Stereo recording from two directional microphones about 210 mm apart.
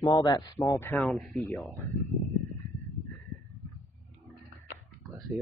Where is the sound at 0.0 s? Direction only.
15° left (ahead or behind).